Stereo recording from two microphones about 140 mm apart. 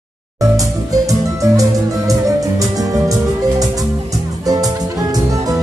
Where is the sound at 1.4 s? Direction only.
25° right (ahead or behind).